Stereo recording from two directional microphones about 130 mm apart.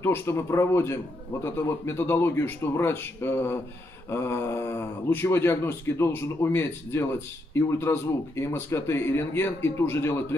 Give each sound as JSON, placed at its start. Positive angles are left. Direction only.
{"t": 0.0, "sound": "speech", "side_deg": 20}